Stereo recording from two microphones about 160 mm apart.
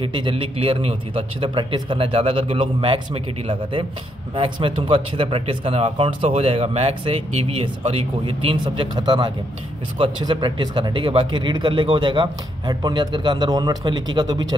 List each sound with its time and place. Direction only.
0.0 s speech: 35° right (ahead or behind)
4.4 s speech: 30° right (ahead or behind)